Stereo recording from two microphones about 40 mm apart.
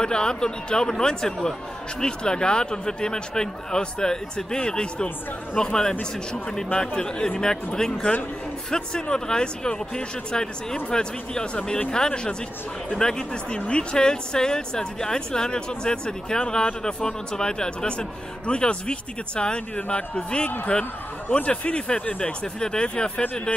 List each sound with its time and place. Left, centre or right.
0.0 s speech: centre